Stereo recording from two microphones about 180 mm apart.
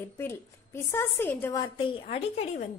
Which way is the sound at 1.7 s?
30° left (ahead or behind).